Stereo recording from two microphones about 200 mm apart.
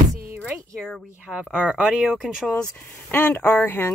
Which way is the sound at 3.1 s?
10° left (ahead or behind).